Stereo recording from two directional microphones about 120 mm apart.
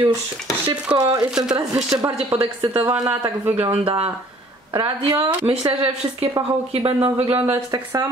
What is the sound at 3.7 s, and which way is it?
A woman's voice, 45° right (ahead or behind).